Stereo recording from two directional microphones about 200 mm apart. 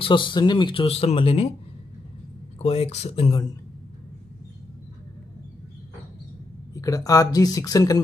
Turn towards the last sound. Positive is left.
turn(degrees=20)  # may be behind; listen again after turning